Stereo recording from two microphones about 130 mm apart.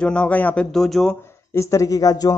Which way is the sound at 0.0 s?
10° left (ahead or behind).